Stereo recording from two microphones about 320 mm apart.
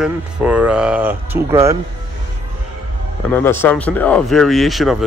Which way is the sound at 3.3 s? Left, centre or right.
Centre.